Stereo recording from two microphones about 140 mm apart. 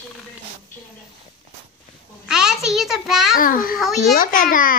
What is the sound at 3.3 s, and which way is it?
A child's voice, 85° left.